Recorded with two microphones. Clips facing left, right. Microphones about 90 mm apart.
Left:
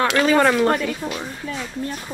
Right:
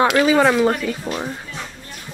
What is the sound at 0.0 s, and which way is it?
Speech, 10° right (ahead or behind).